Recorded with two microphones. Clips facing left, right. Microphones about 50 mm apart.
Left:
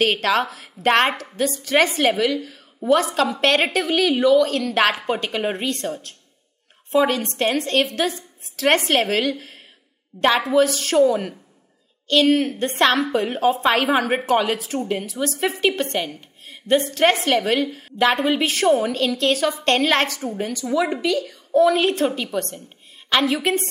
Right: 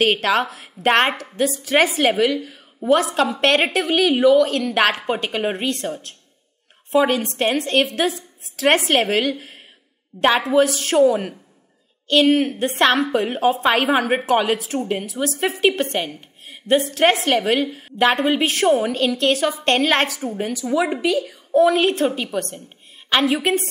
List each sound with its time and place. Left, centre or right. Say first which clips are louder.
0.0 s a woman's voice: right 1 dB; centre
10.5 s a woman's voice: right 1 dB; centre